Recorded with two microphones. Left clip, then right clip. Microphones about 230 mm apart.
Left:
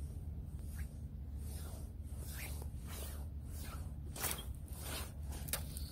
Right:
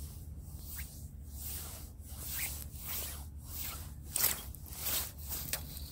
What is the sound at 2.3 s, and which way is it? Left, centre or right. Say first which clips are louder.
Zipper: right 8 dB; right.